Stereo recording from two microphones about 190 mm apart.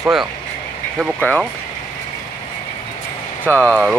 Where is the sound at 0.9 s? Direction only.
Centre (ahead or behind).